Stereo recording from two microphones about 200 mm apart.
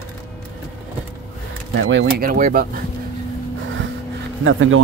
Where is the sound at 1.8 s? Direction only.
60° right (ahead or behind); by 2.7 s 45° right (ahead or behind).